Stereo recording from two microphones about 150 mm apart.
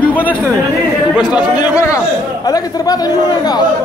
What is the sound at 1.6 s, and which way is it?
A man's voice, 20° left (ahead or behind).